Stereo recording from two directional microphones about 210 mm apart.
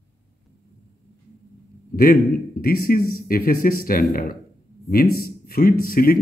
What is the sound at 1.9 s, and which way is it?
Speech, 45° left (ahead or behind).